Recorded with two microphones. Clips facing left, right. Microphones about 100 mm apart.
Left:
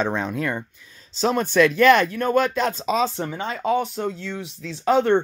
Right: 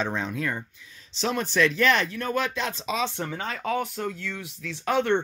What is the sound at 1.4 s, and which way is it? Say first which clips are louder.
Speech: left 6 dB; 55° left (ahead or behind).